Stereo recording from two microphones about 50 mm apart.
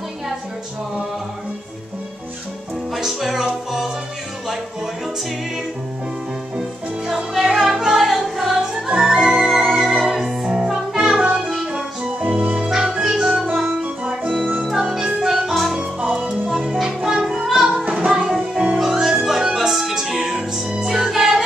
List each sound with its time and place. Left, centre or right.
2.9 s music: centre
7.1 s music: centre
12.0 s music: right
12.6 s music: centre
14.4 s music: right
14.7 s music: centre
15.8 s music: right